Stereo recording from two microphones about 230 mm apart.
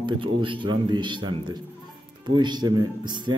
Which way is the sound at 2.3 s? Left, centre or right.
Centre.